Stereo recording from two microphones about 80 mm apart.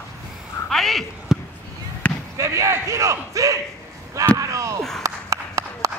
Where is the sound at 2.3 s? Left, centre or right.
Right.